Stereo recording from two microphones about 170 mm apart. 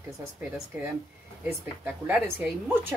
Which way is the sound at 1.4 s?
10° right (ahead or behind).